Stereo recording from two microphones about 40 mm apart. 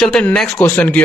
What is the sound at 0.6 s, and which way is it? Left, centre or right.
Speech, left.